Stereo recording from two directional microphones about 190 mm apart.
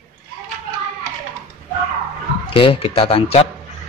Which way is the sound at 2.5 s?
30° left (ahead or behind).